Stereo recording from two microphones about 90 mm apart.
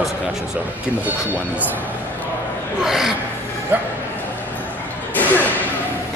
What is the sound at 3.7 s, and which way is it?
Speech, 20° right (ahead or behind).